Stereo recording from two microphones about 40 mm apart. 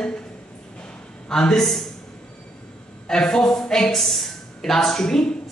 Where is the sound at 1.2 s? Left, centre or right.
Centre.